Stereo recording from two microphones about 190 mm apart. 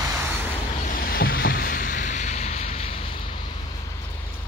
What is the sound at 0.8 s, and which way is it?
Vehicle, 50° left (ahead or behind).